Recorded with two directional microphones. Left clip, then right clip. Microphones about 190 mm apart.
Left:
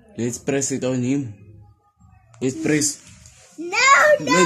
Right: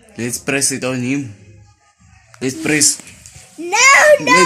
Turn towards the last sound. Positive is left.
turn(degrees=10)  # may be behind; listen again after turning